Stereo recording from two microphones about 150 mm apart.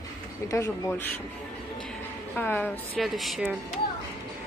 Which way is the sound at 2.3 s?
10° left (ahead or behind).